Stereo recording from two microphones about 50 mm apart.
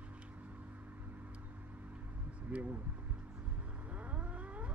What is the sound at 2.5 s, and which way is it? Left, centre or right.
Speech, right.